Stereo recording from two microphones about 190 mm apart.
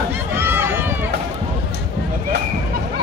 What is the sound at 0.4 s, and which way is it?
Run, 10° right (ahead or behind).